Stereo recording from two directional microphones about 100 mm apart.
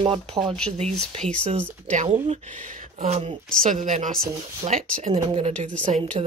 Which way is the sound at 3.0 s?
90° right.